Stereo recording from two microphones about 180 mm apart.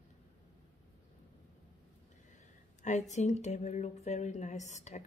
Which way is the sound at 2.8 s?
40° left (ahead or behind).